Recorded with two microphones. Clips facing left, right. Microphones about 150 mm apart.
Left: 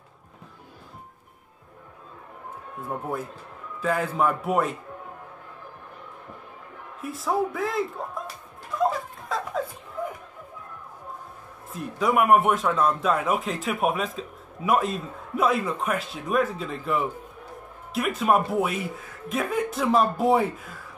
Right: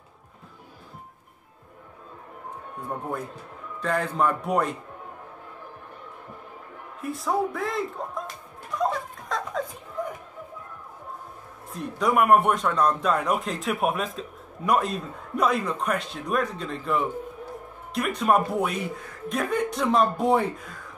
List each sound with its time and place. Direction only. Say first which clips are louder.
2.9 s a man's voice: left 1 dB; centre (ahead or behind)
7.0 s a man's voice: even; centre (ahead or behind)
8.7 s a sound: left 2 dB; centre (ahead or behind)
11.7 s a man's voice: even; centre (ahead or behind)